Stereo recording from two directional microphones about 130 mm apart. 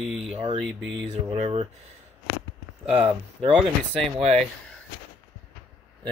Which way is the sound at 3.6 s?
Centre (ahead or behind).